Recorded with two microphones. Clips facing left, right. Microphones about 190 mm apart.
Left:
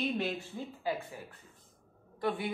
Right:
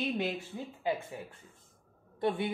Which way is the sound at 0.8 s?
20° right (ahead or behind).